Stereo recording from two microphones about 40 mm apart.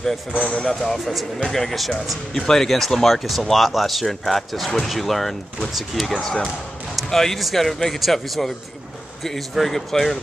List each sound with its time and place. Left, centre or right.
0.3 s speech: left
0.7 s speech: centre